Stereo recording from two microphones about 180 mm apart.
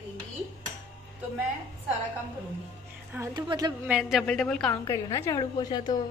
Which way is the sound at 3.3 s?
25° right (ahead or behind).